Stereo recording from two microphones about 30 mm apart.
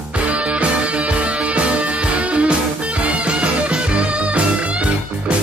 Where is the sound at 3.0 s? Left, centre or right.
Right.